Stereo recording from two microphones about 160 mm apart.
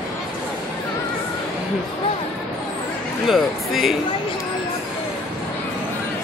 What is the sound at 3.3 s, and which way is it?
Speech, centre (ahead or behind).